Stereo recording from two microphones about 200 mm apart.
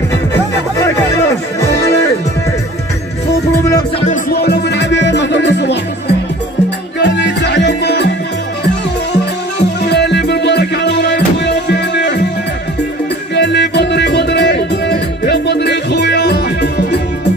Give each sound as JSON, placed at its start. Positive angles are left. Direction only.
{"t": 0.7, "sound": "music", "side_deg": 15}
{"t": 4.3, "sound": "music", "side_deg": 55}
{"t": 9.1, "sound": "music", "side_deg": 55}
{"t": 13.3, "sound": "music", "side_deg": 55}